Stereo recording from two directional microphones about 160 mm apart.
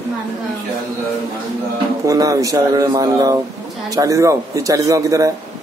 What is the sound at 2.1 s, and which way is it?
A man's voice, 20° right (ahead or behind).